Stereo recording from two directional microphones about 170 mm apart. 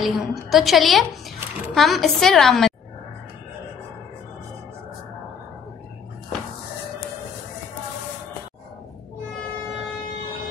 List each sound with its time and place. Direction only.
0.0 s a woman's voice: centre (ahead or behind)